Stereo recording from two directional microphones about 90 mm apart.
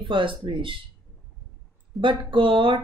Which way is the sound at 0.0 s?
65° right (ahead or behind).